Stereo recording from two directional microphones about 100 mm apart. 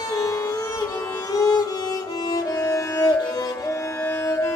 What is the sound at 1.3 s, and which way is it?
Music, 40° left (ahead or behind).